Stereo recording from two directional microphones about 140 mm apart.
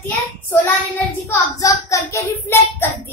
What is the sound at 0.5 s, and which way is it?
Child singing, 15° left (ahead or behind).